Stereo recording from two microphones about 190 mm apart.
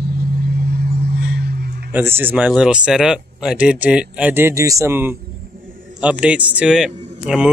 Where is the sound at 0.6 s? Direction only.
60° right (ahead or behind).